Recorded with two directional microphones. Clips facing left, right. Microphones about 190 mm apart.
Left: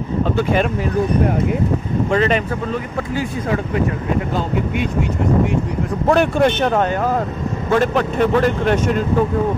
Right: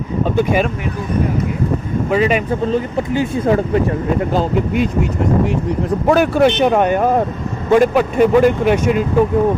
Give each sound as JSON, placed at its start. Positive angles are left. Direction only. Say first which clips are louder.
{"t": 0.2, "sound": "speech", "louder": "right 2 dB", "side_deg": -15}
{"t": 2.0, "sound": "speech", "louder": "right 2 dB", "side_deg": -10}
{"t": 2.6, "sound": "speech", "louder": "right 5 dB", "side_deg": -30}
{"t": 6.0, "sound": "speech", "louder": "right 2 dB", "side_deg": -5}